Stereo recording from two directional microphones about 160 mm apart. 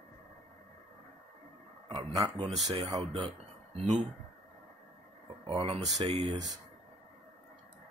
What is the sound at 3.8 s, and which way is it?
Speech, 50° right (ahead or behind).